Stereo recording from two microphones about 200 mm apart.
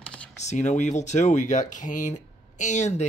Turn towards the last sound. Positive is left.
turn(degrees=35)  # may be behind; listen again after turning